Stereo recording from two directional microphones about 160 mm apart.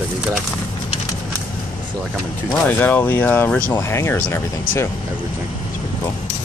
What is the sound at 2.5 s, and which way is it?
Speech, 10° left (ahead or behind).